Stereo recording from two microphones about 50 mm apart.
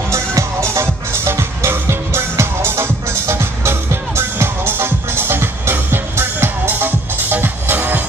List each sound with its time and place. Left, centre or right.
0.1 s music: right
1.1 s music: right